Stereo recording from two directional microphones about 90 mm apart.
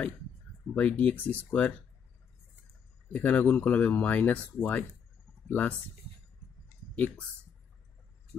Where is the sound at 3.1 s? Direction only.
15° left (ahead or behind).